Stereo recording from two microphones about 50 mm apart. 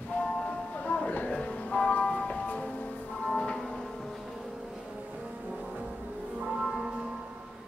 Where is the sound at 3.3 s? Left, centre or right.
Centre.